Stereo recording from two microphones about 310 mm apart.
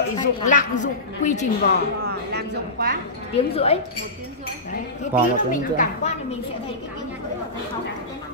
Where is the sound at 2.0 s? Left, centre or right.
Right.